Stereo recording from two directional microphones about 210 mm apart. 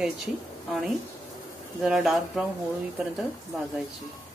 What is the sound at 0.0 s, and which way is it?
Speech, centre (ahead or behind).